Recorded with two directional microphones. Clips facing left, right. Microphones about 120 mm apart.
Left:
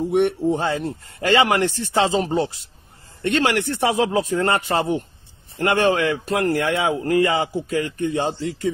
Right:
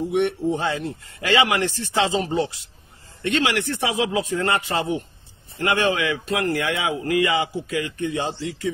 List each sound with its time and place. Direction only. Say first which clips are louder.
0.1 s a man's voice: left 3 dB; 45° left (ahead or behind)